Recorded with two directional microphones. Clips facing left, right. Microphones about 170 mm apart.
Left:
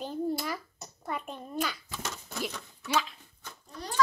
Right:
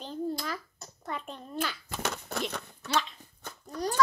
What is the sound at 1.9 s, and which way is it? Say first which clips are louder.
Speech: right 5 dB; 65° right (ahead or behind).